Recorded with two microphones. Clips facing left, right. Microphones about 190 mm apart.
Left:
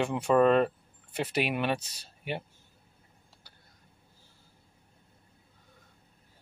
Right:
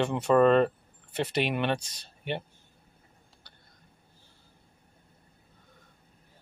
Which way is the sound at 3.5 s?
5° left (ahead or behind).